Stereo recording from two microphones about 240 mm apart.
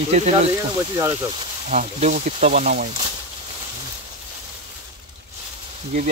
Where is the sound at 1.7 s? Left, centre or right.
Right.